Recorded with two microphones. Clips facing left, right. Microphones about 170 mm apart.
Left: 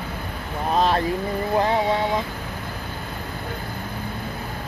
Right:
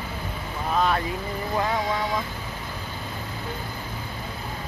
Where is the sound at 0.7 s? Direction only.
30° left (ahead or behind).